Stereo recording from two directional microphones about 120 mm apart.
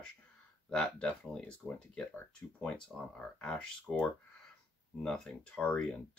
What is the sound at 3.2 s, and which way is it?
Speech, 10° left (ahead or behind).